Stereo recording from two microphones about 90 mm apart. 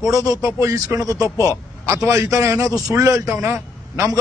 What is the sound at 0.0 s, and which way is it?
A man's voice, 40° right (ahead or behind).